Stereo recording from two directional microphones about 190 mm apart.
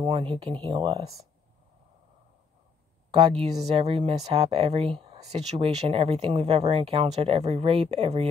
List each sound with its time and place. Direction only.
0.0 s speech: 30° right (ahead or behind)
3.1 s speech: 30° right (ahead or behind)